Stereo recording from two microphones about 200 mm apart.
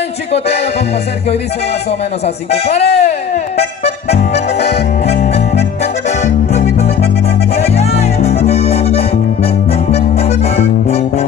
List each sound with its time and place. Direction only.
1.9 s speech: 30° left (ahead or behind)
2.9 s music: 30° left (ahead or behind)